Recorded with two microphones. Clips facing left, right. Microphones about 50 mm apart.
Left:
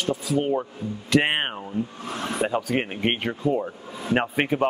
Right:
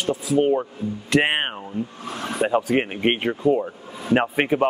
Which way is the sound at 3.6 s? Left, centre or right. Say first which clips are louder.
Right 1 dB; centre.